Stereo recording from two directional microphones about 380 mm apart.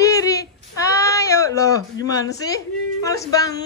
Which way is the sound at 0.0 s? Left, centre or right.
Centre.